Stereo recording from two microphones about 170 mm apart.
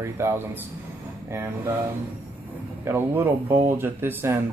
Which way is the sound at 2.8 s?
15° right (ahead or behind).